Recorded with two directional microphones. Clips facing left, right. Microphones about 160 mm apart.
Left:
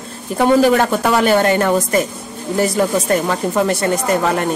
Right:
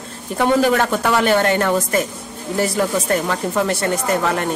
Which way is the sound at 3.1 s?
20° left (ahead or behind).